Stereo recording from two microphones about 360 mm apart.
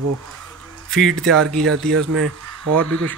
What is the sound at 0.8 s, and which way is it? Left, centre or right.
Speech, centre.